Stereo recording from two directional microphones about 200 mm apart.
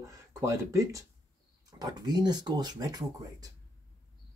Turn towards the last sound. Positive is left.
turn(degrees=-20)  # may be behind; listen again after turning